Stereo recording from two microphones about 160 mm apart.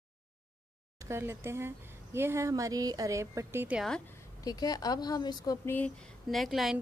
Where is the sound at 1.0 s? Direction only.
15° right (ahead or behind).